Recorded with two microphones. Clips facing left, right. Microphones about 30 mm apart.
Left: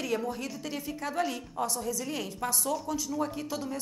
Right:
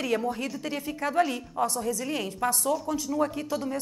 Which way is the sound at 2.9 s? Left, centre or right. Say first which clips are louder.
Right 4 dB; right.